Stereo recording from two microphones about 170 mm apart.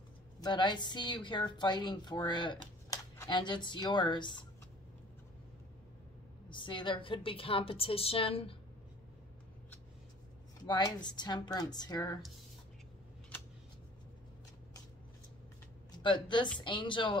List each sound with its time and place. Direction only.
0.4 s a woman's voice: 25° left (ahead or behind)
6.5 s a woman's voice: 30° left (ahead or behind)
10.6 s a woman's voice: 20° left (ahead or behind)
16.0 s a woman's voice: 30° left (ahead or behind)